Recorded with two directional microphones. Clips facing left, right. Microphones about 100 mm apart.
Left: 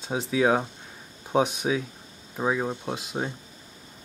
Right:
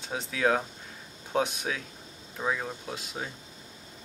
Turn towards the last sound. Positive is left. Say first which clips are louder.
# left 6 dB
turn(degrees=25)  # may be behind; listen again after turning